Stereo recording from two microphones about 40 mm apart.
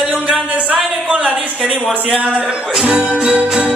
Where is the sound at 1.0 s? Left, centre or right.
Right.